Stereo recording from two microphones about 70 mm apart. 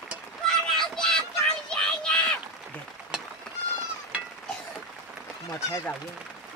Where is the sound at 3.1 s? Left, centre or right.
Centre.